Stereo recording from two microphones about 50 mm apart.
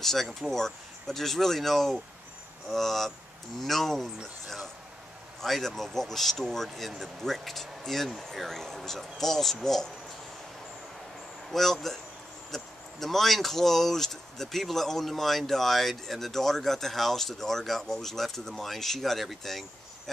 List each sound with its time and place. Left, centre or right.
0.0 s speech: centre
11.5 s speech: centre